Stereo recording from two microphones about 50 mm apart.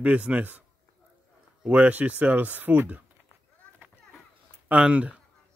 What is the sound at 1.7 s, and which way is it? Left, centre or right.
Speech, right.